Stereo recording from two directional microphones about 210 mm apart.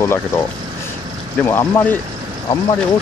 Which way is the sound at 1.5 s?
10° left (ahead or behind).